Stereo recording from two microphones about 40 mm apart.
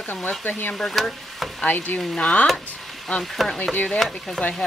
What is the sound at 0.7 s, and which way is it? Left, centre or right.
Speech, centre.